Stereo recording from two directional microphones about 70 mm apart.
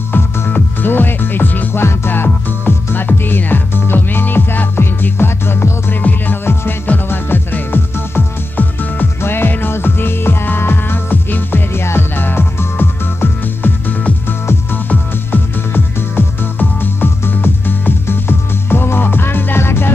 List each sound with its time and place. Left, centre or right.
0.1 s music: left